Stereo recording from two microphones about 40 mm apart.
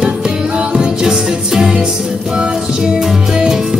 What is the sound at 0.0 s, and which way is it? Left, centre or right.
Music, centre.